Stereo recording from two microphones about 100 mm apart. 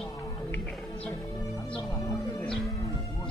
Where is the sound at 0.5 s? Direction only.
10° left (ahead or behind).